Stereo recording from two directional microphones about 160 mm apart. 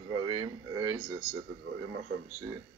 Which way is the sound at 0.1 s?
30° right (ahead or behind).